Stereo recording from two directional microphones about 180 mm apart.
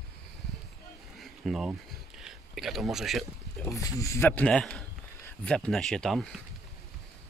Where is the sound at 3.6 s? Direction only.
20° left (ahead or behind); by 6.3 s 5° left (ahead or behind).